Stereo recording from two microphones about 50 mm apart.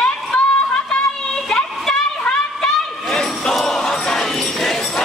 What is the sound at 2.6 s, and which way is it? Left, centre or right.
Crowd, centre.